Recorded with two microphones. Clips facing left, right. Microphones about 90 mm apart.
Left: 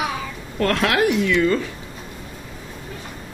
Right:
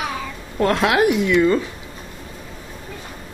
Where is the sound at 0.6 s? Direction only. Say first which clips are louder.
Right 2 dB; 15° right (ahead or behind).